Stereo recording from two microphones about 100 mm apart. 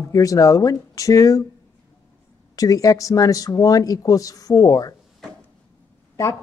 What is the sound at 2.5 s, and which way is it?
A woman's voice, 35° left (ahead or behind).